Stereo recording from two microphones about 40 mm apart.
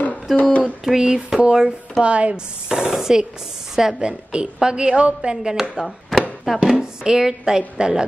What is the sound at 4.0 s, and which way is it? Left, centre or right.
A woman's voice, right.